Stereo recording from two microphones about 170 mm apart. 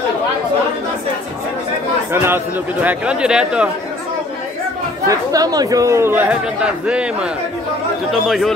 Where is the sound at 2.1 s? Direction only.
15° right (ahead or behind).